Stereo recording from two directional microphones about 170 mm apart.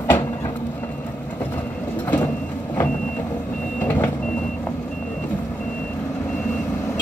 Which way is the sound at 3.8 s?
10° left (ahead or behind).